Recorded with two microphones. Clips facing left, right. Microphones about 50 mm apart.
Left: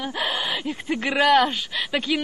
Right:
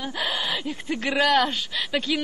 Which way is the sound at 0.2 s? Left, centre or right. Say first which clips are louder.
Left 1 dB; centre.